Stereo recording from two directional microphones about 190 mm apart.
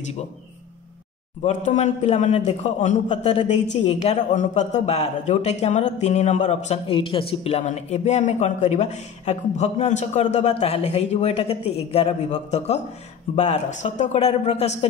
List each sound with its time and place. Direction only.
1.4 s a man's voice: 40° left (ahead or behind)